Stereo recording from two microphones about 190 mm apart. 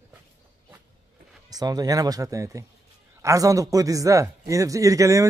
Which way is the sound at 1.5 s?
20° right (ahead or behind).